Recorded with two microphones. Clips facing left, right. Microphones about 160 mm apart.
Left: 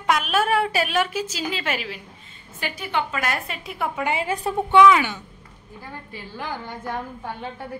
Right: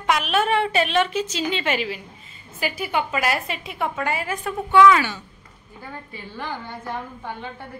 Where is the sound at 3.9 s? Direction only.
20° left (ahead or behind).